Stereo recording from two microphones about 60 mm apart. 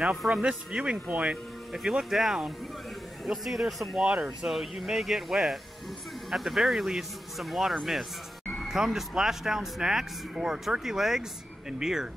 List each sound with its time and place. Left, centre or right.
0.3 s speech: centre
1.7 s speech: centre
4.5 s speech: centre